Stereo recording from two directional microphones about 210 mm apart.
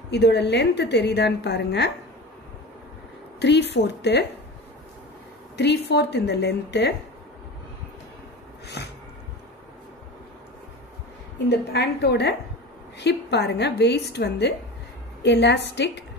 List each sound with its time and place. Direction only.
0.1 s a woman's voice: 55° left (ahead or behind)
3.3 s a woman's voice: 55° left (ahead or behind)
5.6 s a woman's voice: 55° left (ahead or behind)
8.6 s a sound: 50° left (ahead or behind)
11.4 s a woman's voice: 55° left (ahead or behind)